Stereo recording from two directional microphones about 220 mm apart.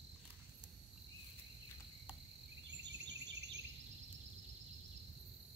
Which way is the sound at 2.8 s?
50° right (ahead or behind).